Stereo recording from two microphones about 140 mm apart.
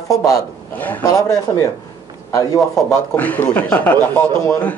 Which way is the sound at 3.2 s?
15° left (ahead or behind).